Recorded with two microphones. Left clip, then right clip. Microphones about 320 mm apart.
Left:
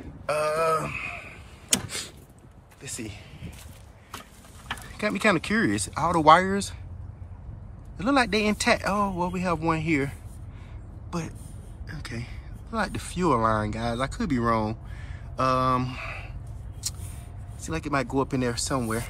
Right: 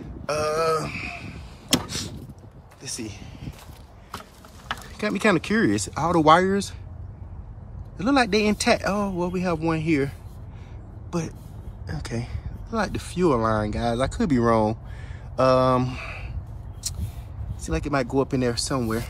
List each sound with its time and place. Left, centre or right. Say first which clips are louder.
0.3 s a sound: right 1 dB; centre
1.9 s door: right 3 dB; centre
2.8 s speech: right 3 dB; centre
4.8 s speech: right 1 dB; centre
8.0 s speech: right 2 dB; centre
16.8 s a sound: right 1 dB; centre
17.6 s speech: right 2 dB; centre